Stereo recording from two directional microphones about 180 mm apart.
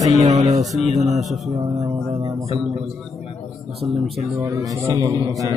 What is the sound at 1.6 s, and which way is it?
Music, 35° right (ahead or behind).